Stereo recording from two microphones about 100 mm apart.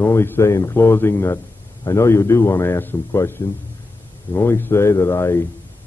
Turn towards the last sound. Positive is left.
turn(degrees=25)  # may be behind; listen again after turning